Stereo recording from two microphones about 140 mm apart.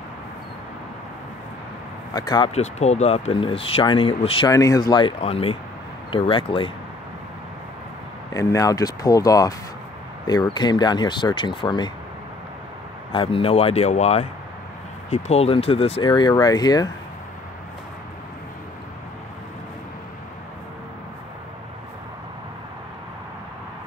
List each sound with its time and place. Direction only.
2.1 s speech: 30° left (ahead or behind)
2.5 s speech: 50° left (ahead or behind)
4.5 s speech: 25° left (ahead or behind)
5.2 s speech: 45° left (ahead or behind)
8.3 s speech: 25° left (ahead or behind)
13.1 s speech: 40° left (ahead or behind)